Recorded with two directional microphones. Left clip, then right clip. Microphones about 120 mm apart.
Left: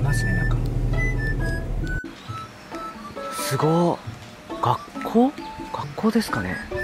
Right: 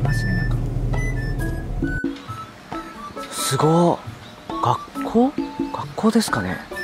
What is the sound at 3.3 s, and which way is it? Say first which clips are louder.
Speech: right 4 dB; 20° right (ahead or behind).